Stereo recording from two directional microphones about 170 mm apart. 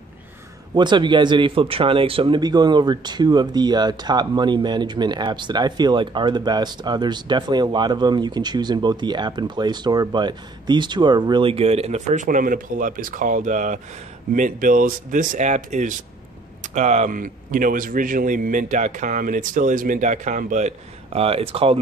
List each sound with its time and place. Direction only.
0.7 s a man's voice: 25° right (ahead or behind)